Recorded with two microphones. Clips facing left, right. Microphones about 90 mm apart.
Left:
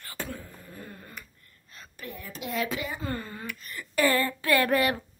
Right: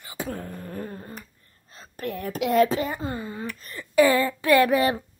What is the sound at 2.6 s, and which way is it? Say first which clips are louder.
Speech: right 7 dB; 40° right (ahead or behind).